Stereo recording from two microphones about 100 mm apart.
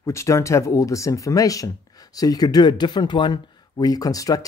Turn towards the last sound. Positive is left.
turn(degrees=35)  # may be behind; listen again after turning